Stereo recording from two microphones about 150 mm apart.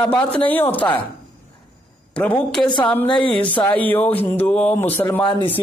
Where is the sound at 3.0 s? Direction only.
35° left (ahead or behind).